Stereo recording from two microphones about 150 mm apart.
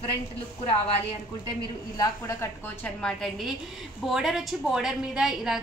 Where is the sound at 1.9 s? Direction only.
20° left (ahead or behind).